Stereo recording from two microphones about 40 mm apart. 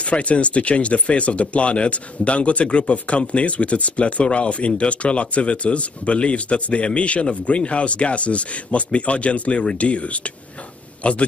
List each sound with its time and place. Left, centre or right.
0.0 s speech: left